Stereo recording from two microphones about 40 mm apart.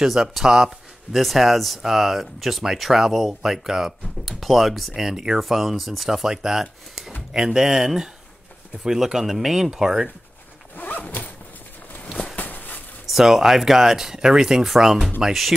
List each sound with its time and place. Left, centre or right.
0.0 s speech: centre
5.0 s speech: centre
10.8 s zipper: left
12.4 s a sound: left
13.1 s speech: centre